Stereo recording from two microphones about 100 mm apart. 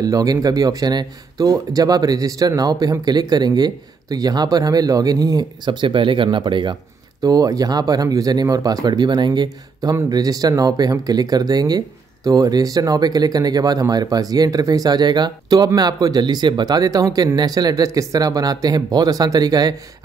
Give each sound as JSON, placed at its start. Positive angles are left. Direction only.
{"t": 0.0, "sound": "speech", "side_deg": -35}
{"t": 7.2, "sound": "speech", "side_deg": -40}